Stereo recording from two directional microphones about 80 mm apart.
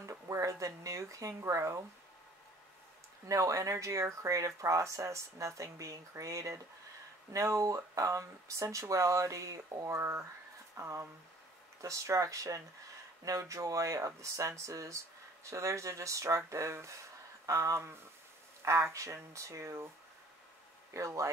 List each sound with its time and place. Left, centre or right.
0.0 s a sound: right
3.3 s speech: right
9.9 s speech: right
20.9 s speech: right